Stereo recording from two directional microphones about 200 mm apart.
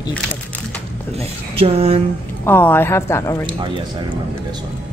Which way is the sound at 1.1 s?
30° right (ahead or behind).